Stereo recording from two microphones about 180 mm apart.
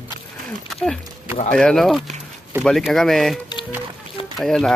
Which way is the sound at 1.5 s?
5° left (ahead or behind).